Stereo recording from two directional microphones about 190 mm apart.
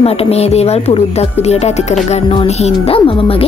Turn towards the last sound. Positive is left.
turn(degrees=30)  # may be behind; listen again after turning